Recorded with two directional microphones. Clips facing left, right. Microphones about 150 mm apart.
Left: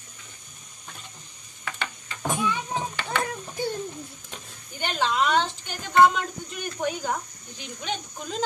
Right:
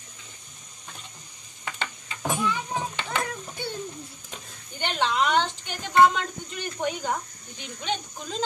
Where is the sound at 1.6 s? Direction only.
25° right (ahead or behind).